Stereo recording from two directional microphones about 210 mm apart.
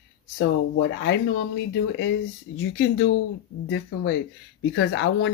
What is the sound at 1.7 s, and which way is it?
Speech, 60° left (ahead or behind).